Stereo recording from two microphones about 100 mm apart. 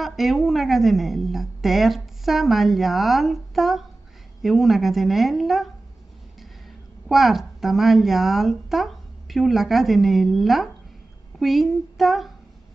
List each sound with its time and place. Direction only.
0.0 s a woman's voice: centre (ahead or behind)
7.1 s a woman's voice: centre (ahead or behind)